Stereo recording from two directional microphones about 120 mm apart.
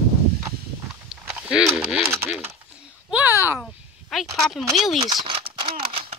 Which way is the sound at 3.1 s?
15° right (ahead or behind).